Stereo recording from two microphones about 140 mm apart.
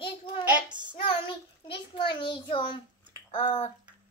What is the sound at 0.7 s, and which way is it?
Child singing, 35° right (ahead or behind).